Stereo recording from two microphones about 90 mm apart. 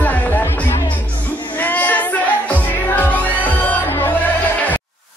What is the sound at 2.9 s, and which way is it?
Music, 20° left (ahead or behind).